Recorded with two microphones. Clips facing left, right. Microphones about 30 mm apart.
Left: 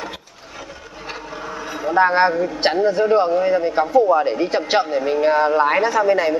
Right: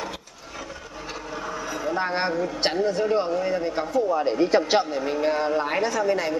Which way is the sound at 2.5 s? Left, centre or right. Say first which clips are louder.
Left 6 dB; centre.